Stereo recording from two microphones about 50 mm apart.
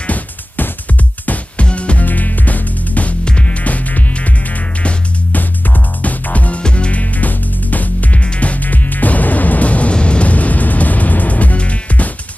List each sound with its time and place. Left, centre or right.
0.0 s music: left
6.0 s music: left